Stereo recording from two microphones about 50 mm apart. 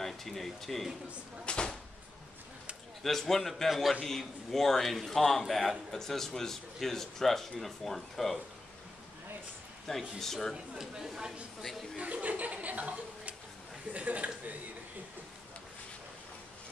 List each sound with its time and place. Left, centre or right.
0.0 s speech: centre
1.4 s speech: left
3.0 s a man's voice: centre
9.8 s speech: centre
10.5 s speech: centre
12.0 s speech: right